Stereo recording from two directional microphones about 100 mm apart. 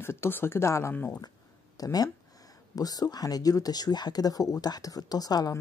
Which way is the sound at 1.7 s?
40° left (ahead or behind).